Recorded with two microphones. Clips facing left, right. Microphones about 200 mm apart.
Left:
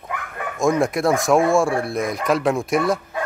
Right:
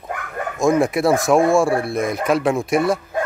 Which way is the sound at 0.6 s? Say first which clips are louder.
Right 2 dB; centre (ahead or behind).